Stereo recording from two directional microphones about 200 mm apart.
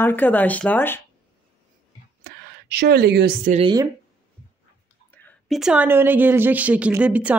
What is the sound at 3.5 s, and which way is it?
Speech, 30° right (ahead or behind).